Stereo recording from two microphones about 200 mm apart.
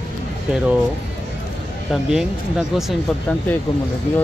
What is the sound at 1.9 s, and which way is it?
Speech, centre (ahead or behind).